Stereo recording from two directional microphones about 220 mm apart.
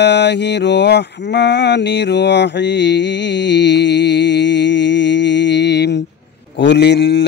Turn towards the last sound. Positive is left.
turn(degrees=50)  # may be behind; listen again after turning